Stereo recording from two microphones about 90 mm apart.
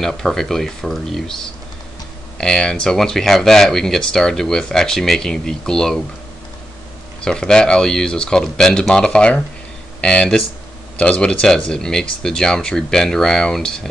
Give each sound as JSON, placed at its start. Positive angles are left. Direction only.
{"t": 0.0, "sound": "speech", "side_deg": 5}
{"t": 7.2, "sound": "speech", "side_deg": 5}